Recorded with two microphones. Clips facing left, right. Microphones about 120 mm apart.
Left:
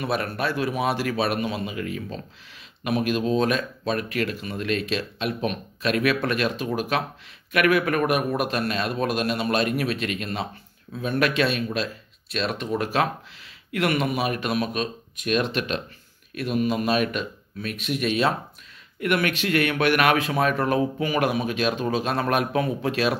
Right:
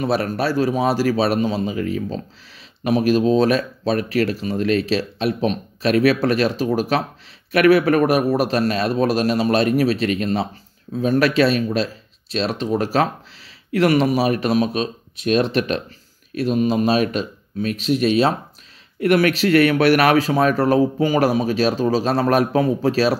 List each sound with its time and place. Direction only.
0.0 s a man's voice: 35° right (ahead or behind)